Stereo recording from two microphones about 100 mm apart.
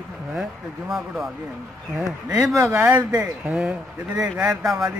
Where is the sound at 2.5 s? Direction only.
30° right (ahead or behind).